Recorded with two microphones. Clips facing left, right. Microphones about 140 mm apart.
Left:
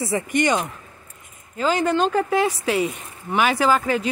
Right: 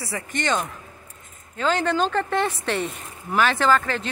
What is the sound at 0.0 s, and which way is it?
Speech, 20° left (ahead or behind).